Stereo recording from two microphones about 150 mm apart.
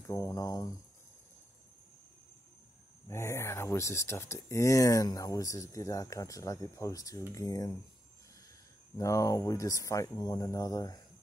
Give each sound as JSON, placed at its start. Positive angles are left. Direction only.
{"t": 0.0, "sound": "speech", "side_deg": 20}
{"t": 3.1, "sound": "speech", "side_deg": 15}
{"t": 8.9, "sound": "speech", "side_deg": 20}